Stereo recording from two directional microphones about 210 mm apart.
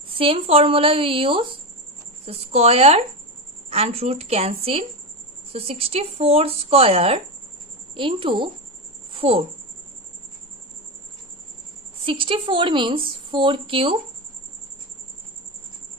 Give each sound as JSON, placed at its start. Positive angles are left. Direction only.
{"t": 0.1, "sound": "speech", "side_deg": -25}
{"t": 9.1, "sound": "a sound", "side_deg": -25}
{"t": 12.0, "sound": "speech", "side_deg": -25}